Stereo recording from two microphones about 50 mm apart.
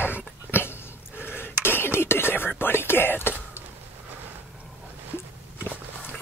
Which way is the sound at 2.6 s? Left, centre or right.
Left.